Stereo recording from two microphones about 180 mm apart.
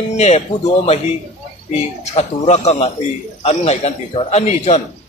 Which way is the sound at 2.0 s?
35° left (ahead or behind).